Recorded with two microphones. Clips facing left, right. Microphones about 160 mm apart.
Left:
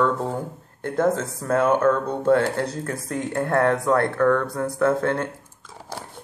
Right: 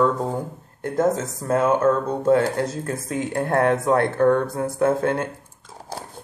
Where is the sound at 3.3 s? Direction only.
30° right (ahead or behind).